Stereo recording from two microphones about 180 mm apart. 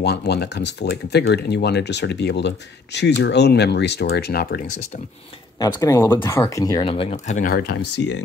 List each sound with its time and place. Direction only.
0.0 s speech: 70° left (ahead or behind)
5.6 s speech: 15° left (ahead or behind); by 8.2 s 80° left